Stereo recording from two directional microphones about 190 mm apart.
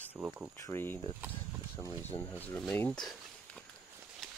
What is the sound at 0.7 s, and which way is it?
Speech, 10° left (ahead or behind).